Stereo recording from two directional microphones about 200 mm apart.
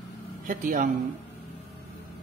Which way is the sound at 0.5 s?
40° right (ahead or behind).